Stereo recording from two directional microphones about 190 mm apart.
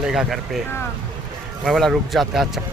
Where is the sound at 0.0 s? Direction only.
Centre (ahead or behind).